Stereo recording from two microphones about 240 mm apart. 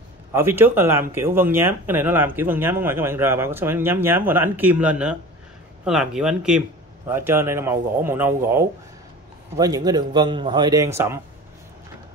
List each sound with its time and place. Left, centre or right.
0.3 s speech: centre